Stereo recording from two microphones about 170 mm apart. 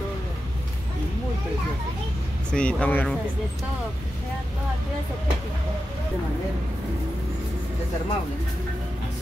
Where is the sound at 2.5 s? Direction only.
5° left (ahead or behind).